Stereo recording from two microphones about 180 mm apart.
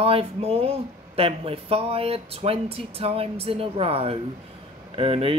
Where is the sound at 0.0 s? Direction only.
30° right (ahead or behind).